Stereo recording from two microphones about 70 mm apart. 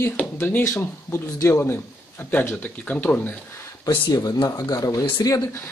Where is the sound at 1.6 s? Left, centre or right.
Left.